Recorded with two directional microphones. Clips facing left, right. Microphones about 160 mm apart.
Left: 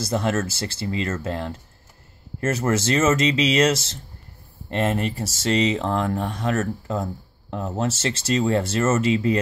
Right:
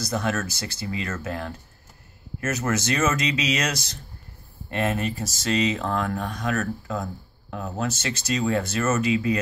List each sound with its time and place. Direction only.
0.0 s speech: 30° left (ahead or behind)